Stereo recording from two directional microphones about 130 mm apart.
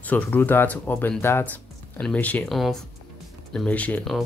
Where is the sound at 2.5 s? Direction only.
Centre (ahead or behind).